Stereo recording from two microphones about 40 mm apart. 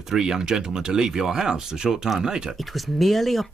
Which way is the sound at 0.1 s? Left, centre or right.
Centre.